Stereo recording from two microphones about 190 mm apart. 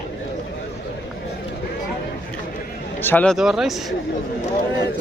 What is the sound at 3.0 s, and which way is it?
Speech, 10° left (ahead or behind).